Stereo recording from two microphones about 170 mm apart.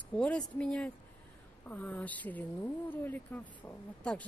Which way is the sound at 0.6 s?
5° left (ahead or behind).